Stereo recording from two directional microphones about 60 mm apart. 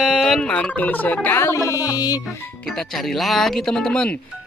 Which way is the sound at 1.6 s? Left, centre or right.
Left.